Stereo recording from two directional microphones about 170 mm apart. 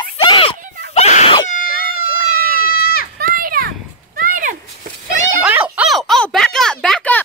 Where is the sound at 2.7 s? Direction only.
60° left (ahead or behind).